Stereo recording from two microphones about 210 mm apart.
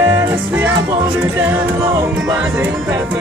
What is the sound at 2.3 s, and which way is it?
Music, 5° right (ahead or behind).